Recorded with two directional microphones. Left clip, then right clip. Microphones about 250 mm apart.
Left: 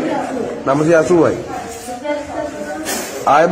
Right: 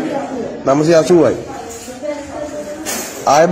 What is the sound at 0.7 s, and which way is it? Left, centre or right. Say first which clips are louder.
Speech: right 2 dB; right.